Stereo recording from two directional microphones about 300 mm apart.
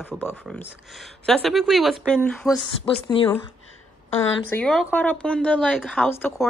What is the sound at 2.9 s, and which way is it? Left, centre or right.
Speech, centre.